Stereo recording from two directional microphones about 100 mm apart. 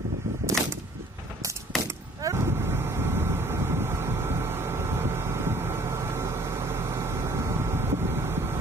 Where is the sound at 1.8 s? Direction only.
30° right (ahead or behind).